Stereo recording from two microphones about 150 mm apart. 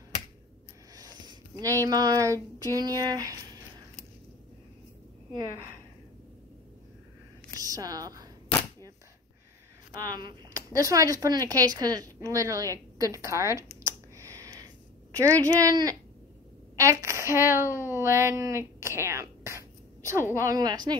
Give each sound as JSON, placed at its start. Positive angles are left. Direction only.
{"t": 0.9, "sound": "a sound", "side_deg": -25}
{"t": 1.9, "sound": "speech", "side_deg": -25}
{"t": 7.5, "sound": "a woman's voice", "side_deg": -25}
{"t": 10.0, "sound": "speech", "side_deg": -25}
{"t": 13.8, "sound": "a sound", "side_deg": -20}
{"t": 15.4, "sound": "speech", "side_deg": -25}